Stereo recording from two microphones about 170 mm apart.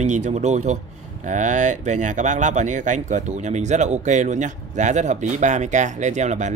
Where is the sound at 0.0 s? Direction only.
45° right (ahead or behind).